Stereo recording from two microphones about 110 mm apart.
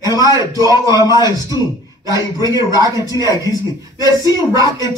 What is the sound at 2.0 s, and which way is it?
Music, 30° right (ahead or behind).